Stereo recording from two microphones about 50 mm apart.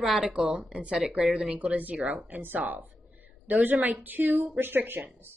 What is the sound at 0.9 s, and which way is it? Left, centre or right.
Speech, centre.